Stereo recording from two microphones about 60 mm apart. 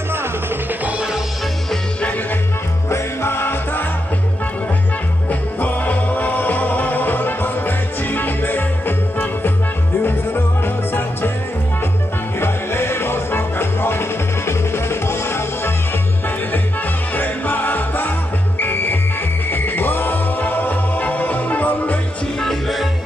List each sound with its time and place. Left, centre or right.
0.8 s music: centre
2.0 s music: left
2.9 s music: left
5.3 s music: left
12.4 s music: left
17.1 s music: left
22.4 s music: centre